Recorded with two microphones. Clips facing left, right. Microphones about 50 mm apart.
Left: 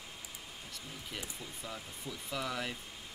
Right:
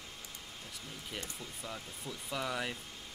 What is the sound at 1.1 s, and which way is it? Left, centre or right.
Speech, centre.